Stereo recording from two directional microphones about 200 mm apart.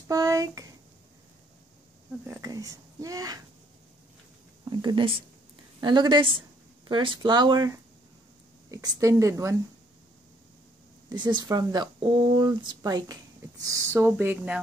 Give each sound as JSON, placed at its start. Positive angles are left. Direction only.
{"t": 0.1, "sound": "speech", "side_deg": -15}
{"t": 2.2, "sound": "speech", "side_deg": -15}
{"t": 4.6, "sound": "speech", "side_deg": -25}
{"t": 11.1, "sound": "speech", "side_deg": -20}